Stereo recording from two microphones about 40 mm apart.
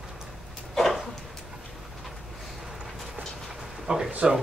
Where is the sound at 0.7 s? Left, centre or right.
Centre.